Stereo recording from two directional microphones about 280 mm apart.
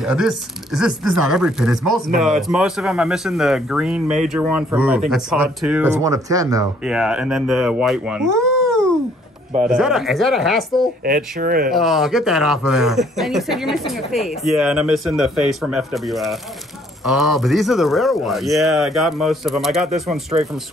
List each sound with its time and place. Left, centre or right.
0.0 s speech: centre
9.5 s speech: right
9.8 s speech: centre
11.1 s speech: right
11.7 s speech: centre